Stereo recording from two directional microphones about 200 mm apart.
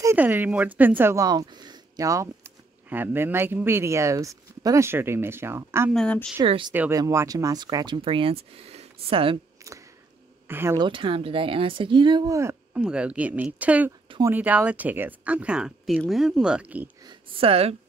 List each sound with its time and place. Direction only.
0.0 s a woman's voice: 10° right (ahead or behind)
5.9 s speech: 5° left (ahead or behind)
6.4 s speech: 25° right (ahead or behind)
6.7 s speech: 10° right (ahead or behind)
9.6 s a sound: 15° right (ahead or behind)
10.5 s a woman's voice: 10° right (ahead or behind)
10.9 s a woman's voice: 25° right (ahead or behind); by 13.9 s 5° right (ahead or behind)
14.0 s a sound: 25° right (ahead or behind)
14.3 s a woman's voice: 10° right (ahead or behind)
17.0 s speech: 25° right (ahead or behind)